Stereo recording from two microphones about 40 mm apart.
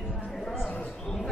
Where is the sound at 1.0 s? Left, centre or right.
Centre.